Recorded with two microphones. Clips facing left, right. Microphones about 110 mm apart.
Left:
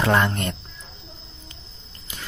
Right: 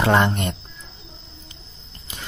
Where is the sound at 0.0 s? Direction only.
20° right (ahead or behind).